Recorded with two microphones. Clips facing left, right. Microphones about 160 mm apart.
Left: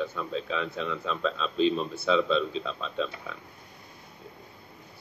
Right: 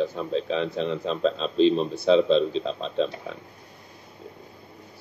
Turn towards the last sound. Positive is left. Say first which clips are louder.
# right 6 dB
turn(degrees=-35)  # may be behind; listen again after turning